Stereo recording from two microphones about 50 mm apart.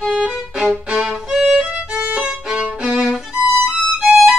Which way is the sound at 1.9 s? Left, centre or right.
Right.